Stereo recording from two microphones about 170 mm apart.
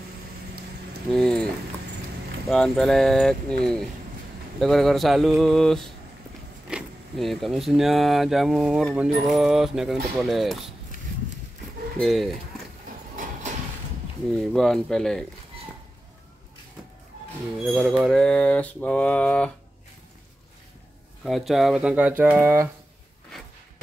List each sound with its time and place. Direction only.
1.1 s a sound: 5° left (ahead or behind)
2.4 s speech: centre (ahead or behind)
12.0 s speech: centre (ahead or behind)
13.1 s a sound: 50° right (ahead or behind)
14.3 s speech: centre (ahead or behind)
17.6 s speech: 5° right (ahead or behind)
21.2 s speech: centre (ahead or behind)